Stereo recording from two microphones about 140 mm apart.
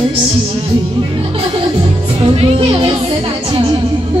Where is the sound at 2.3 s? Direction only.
45° right (ahead or behind).